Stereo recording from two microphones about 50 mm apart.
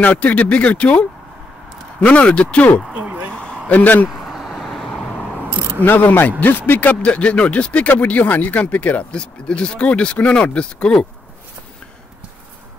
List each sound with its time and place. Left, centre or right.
0.0 s speech: left
2.9 s a sound: right
3.6 s speech: left
4.1 s vehicle: centre
5.8 s speech: left
9.1 s speech: centre